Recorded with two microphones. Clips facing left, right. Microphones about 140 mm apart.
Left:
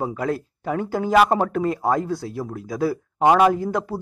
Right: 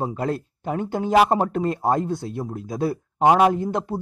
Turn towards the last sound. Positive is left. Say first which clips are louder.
# left 1 dB
turn(degrees=-20)  # may be behind; listen again after turning